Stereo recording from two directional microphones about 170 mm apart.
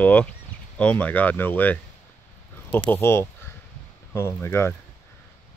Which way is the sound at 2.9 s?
15° left (ahead or behind).